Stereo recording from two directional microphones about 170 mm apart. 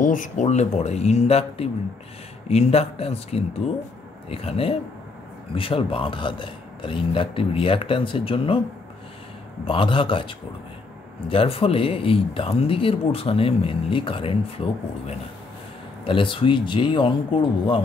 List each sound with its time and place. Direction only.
0.0 s speech: 50° left (ahead or behind); by 8.6 s 30° left (ahead or behind)
9.7 s speech: 30° left (ahead or behind)